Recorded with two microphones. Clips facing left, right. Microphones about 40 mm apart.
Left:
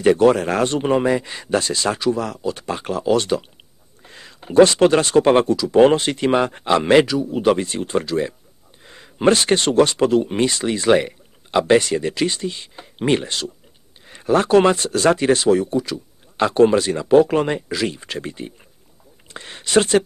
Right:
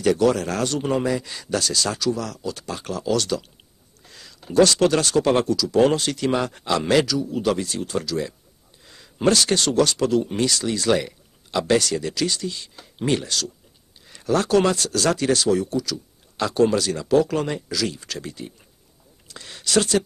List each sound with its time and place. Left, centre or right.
0.0 s speech: left